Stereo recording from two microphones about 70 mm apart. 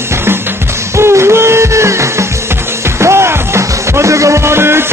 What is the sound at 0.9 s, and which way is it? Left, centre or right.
Music, right.